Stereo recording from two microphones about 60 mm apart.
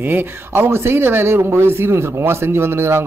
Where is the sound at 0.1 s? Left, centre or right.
Right.